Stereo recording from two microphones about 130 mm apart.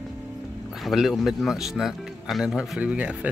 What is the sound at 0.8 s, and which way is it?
Speech, centre (ahead or behind).